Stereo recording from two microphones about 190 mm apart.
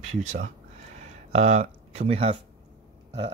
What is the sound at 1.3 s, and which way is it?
Speech, 35° right (ahead or behind).